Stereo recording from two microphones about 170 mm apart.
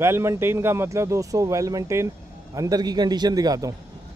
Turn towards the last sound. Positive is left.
turn(degrees=-20)  # may be behind; listen again after turning